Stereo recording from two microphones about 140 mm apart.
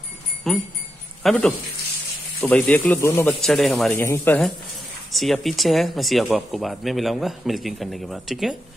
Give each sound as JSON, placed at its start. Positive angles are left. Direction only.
{"t": 0.5, "sound": "jingle bell", "side_deg": 0}
{"t": 1.2, "sound": "speech", "side_deg": 10}
{"t": 3.3, "sound": "speech", "side_deg": 5}
{"t": 3.9, "sound": "speech", "side_deg": 15}
{"t": 5.1, "sound": "speech", "side_deg": 0}